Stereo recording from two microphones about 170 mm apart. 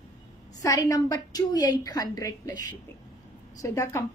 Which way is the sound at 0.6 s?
20° left (ahead or behind).